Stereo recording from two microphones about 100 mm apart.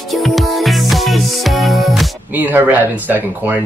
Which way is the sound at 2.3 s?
20° right (ahead or behind).